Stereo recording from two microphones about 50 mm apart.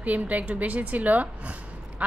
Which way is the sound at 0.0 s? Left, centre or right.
Right.